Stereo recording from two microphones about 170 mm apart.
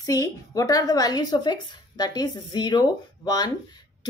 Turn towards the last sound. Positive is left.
turn(degrees=20)  # may be behind; listen again after turning